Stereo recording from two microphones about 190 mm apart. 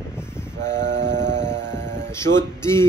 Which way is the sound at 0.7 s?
70° right (ahead or behind).